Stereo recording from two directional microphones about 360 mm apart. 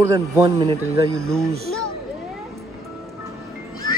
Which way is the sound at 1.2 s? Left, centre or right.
Centre.